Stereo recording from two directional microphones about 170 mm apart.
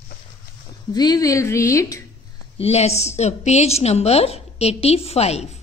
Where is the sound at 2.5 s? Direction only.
40° left (ahead or behind).